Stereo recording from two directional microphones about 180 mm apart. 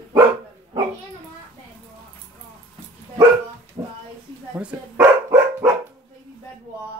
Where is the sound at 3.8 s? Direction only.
15° right (ahead or behind).